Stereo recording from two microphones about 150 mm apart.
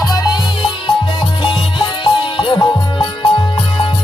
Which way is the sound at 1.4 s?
30° left (ahead or behind).